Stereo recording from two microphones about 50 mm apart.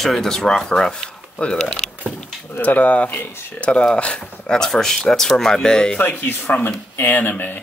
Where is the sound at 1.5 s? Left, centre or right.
Centre.